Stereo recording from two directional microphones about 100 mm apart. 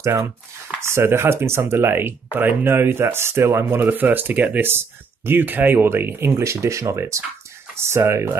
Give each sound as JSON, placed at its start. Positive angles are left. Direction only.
{"t": 0.7, "sound": "speech", "side_deg": -25}